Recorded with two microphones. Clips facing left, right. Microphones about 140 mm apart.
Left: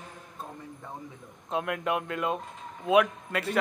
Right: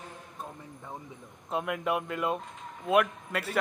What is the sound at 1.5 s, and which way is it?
A man's voice, centre (ahead or behind).